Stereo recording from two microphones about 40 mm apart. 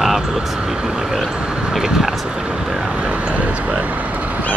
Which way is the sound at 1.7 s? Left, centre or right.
Centre.